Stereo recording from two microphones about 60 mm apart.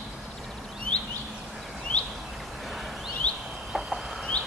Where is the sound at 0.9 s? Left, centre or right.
Centre.